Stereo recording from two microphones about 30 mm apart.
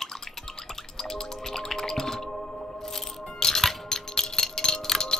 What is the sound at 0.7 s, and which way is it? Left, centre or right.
Music, centre.